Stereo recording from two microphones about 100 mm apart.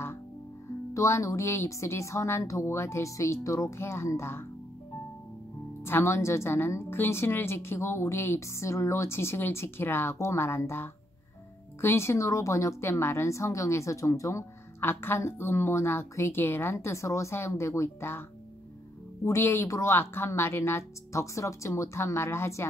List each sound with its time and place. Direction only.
0.9 s a woman's voice: 30° left (ahead or behind)
5.9 s a woman's voice: 25° left (ahead or behind)
19.2 s a woman's voice: 25° left (ahead or behind)